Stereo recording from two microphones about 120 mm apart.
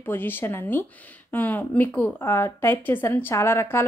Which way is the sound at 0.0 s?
15° left (ahead or behind).